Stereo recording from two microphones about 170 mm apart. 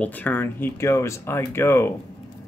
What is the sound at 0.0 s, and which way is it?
Speech, 10° left (ahead or behind).